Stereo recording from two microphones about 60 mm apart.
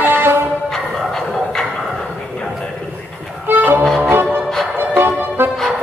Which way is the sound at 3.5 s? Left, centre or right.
Right.